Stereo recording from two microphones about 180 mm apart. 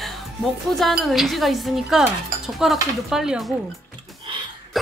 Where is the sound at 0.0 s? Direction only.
Centre (ahead or behind).